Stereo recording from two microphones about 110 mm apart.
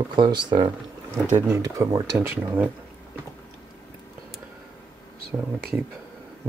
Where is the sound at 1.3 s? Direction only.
25° right (ahead or behind).